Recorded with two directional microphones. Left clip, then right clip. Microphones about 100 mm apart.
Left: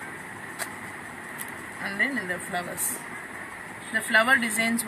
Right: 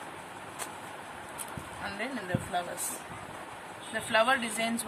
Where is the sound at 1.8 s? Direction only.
25° right (ahead or behind).